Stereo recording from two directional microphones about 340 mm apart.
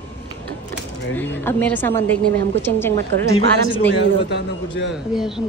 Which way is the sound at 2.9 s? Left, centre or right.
Right.